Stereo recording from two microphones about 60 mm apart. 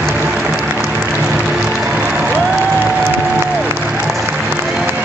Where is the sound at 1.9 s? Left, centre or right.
Right.